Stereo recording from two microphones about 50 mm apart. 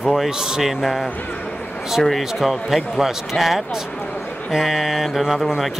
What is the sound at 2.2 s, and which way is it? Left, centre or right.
A man's voice, centre.